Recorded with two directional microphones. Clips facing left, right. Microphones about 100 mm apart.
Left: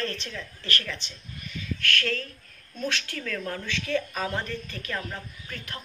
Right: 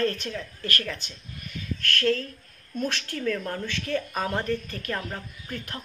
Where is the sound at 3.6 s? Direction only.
45° right (ahead or behind).